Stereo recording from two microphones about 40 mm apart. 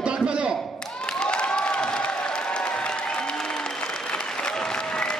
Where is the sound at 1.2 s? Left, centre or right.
Left.